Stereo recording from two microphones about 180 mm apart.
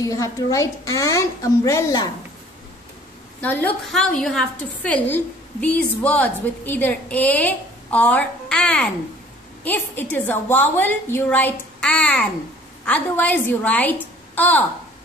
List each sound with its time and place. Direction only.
0.0 s a woman's voice: 20° left (ahead or behind)
3.3 s a woman's voice: 10° left (ahead or behind)